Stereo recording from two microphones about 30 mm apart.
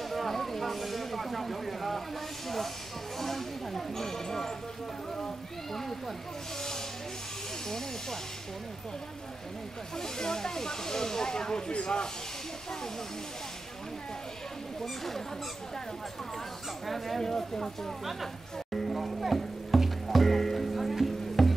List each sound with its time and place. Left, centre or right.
0.1 s vehicle: centre
3.2 s a sound: centre
9.9 s speech: centre
14.8 s speech: centre
16.8 s speech: centre
17.2 s speech: centre
18.7 s music: centre